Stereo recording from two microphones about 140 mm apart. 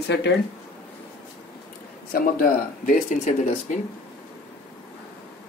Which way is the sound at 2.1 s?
90° left.